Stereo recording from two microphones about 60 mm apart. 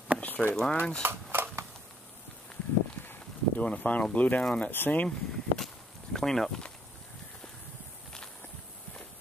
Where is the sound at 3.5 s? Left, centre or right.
Left.